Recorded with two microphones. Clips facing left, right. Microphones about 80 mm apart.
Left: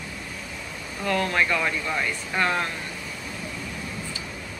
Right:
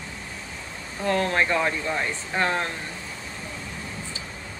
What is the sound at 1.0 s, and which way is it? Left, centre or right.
Speech, right.